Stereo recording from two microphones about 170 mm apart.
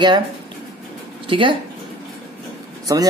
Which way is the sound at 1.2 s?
30° right (ahead or behind).